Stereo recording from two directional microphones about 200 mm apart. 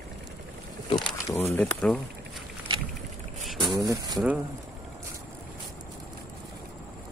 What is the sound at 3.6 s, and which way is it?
Speech, 20° right (ahead or behind).